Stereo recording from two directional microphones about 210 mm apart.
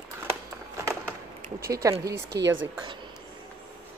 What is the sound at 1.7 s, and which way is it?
Speech, 15° right (ahead or behind).